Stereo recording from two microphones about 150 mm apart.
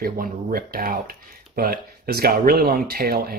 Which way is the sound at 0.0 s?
80° right.